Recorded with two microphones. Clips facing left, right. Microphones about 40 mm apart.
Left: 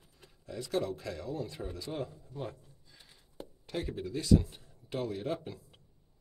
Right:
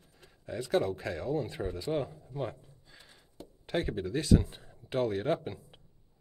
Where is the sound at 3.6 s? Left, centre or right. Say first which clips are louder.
Right 5 dB; right.